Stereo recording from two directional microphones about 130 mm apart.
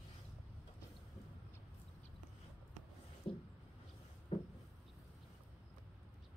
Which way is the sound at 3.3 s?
45° left (ahead or behind).